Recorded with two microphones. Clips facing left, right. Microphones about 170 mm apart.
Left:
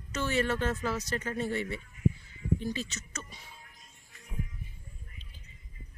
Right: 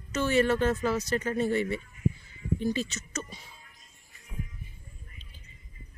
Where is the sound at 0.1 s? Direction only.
15° right (ahead or behind).